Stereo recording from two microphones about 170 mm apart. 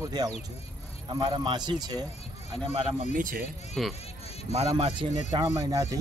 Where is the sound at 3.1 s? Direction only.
50° right (ahead or behind).